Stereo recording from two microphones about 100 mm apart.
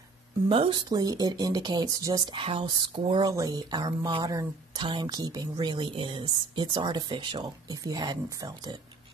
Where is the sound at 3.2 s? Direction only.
40° right (ahead or behind).